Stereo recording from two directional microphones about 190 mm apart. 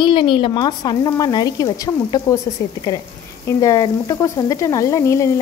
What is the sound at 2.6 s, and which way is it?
Frying, 15° left (ahead or behind).